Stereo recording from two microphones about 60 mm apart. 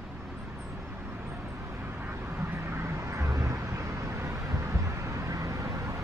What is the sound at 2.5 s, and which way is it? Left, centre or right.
Vehicle, right.